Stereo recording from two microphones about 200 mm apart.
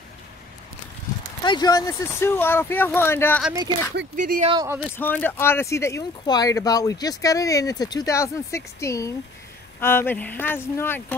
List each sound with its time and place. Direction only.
1.4 s speech: 20° left (ahead or behind)
4.2 s speech: 40° right (ahead or behind)
4.5 s speech: 20° right (ahead or behind)
4.9 s speech: 10° left (ahead or behind)